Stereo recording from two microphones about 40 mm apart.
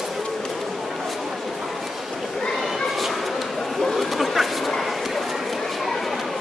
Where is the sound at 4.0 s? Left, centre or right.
Centre.